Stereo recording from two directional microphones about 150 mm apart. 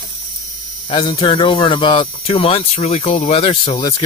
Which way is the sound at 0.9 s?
35° left (ahead or behind).